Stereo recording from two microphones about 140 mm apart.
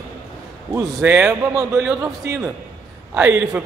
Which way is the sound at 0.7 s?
15° right (ahead or behind).